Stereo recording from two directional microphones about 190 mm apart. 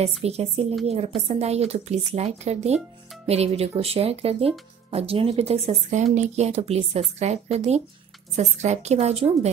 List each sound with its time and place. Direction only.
0.2 s speech: 35° right (ahead or behind)